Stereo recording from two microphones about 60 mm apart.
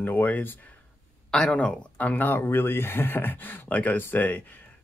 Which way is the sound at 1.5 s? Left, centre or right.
Left.